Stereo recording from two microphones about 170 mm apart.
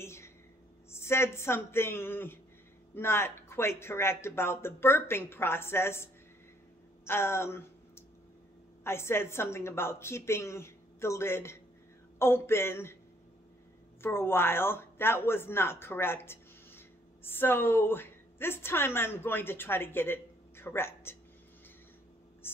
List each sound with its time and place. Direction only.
0.0 s a sound: 15° left (ahead or behind)
0.9 s speech: 15° left (ahead or behind)
7.1 s speech: 15° left (ahead or behind)
14.0 s speech: 15° left (ahead or behind)